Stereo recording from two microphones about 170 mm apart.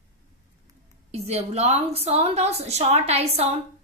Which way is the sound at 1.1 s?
40° right (ahead or behind).